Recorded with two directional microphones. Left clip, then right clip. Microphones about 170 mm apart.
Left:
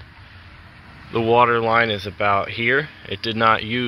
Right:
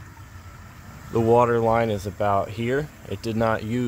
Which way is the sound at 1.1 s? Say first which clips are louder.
Left 3 dB; 10° right (ahead or behind).